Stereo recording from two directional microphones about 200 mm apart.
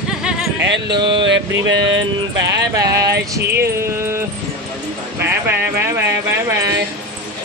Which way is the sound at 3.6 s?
15° right (ahead or behind).